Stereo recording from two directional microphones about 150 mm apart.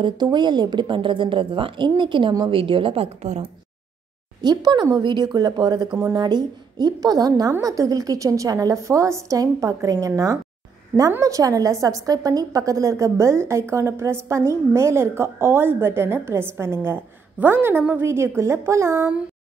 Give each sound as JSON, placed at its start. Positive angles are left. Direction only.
{"t": 0.0, "sound": "speech", "side_deg": -30}
{"t": 4.4, "sound": "a woman's voice", "side_deg": -25}